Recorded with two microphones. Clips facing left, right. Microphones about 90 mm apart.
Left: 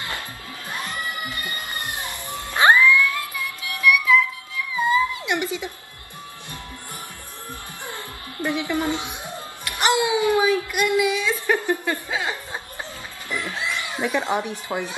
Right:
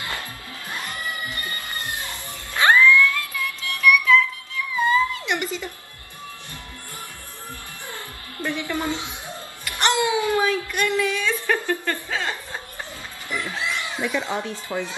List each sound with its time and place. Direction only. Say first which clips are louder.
1.3 s music: left 1 dB; 20° left (ahead or behind)
8.6 s speech: left 2 dB; 20° left (ahead or behind)
9.7 s a sound: left 1 dB; 10° left (ahead or behind)
13.9 s speech: left 4 dB; 20° left (ahead or behind)